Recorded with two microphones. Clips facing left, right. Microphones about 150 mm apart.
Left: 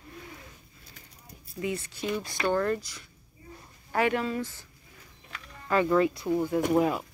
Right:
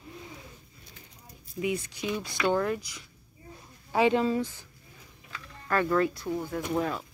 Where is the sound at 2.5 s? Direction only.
5° right (ahead or behind).